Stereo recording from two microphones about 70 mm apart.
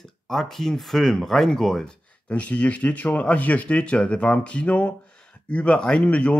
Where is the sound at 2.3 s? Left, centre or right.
Centre.